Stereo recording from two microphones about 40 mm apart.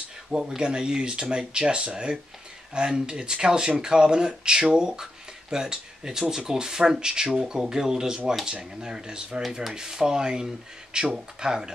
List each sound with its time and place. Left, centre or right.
0.6 s speech: right